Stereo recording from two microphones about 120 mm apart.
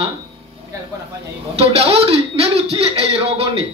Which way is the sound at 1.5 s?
55° right (ahead or behind).